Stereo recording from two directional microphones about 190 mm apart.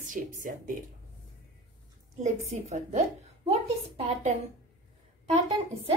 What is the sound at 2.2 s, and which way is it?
A woman's voice, 40° right (ahead or behind).